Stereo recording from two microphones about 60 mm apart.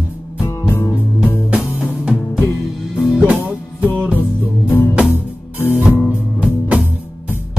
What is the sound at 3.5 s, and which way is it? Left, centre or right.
Music, right.